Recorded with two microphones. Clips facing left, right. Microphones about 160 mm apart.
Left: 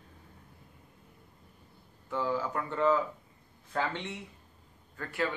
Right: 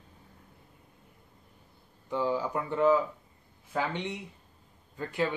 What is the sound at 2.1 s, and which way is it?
Speech, 15° right (ahead or behind).